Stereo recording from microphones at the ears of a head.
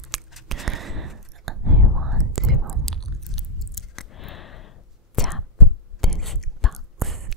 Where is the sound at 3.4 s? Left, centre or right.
Left.